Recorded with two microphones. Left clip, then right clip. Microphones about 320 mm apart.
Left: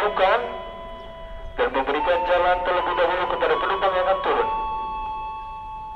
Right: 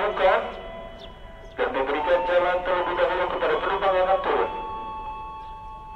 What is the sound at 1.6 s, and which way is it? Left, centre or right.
Music, centre.